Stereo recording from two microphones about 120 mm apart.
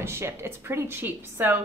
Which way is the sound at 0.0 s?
20° right (ahead or behind).